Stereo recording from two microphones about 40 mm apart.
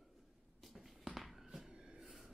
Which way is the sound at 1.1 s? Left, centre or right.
Centre.